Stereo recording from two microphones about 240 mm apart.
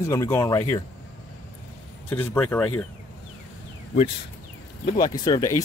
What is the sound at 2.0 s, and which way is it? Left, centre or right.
Speech, centre.